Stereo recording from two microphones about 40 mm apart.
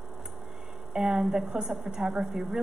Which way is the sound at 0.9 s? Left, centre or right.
Centre.